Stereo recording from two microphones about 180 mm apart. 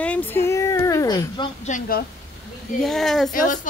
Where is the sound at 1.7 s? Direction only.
40° left (ahead or behind).